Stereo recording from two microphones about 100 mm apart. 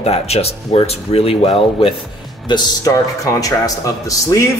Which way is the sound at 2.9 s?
35° left (ahead or behind).